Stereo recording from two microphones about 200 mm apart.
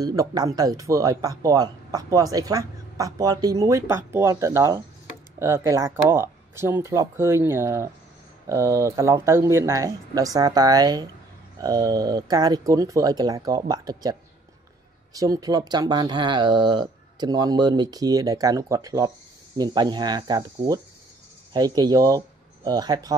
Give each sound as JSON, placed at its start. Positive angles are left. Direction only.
{"t": 0.0, "sound": "speech", "side_deg": -20}
{"t": 15.1, "sound": "speech", "side_deg": -15}